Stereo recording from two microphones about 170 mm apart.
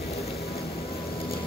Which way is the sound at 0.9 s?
35° left (ahead or behind).